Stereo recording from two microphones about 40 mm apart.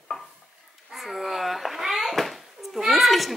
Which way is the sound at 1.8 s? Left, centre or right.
Centre.